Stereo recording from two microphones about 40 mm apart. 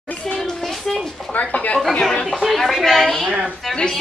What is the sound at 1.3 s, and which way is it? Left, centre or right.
Speech, left.